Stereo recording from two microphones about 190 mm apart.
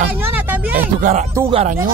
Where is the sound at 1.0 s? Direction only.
40° right (ahead or behind).